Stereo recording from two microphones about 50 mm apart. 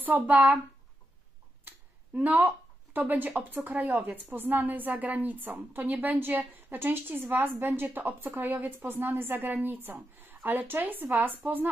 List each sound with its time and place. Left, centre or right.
0.0 s a woman's voice: right
2.1 s a woman's voice: right